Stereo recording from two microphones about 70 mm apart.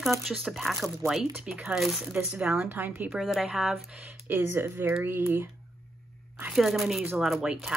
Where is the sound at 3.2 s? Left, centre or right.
Centre.